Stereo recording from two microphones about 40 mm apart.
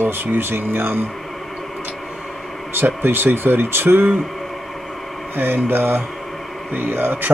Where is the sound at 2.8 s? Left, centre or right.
Right.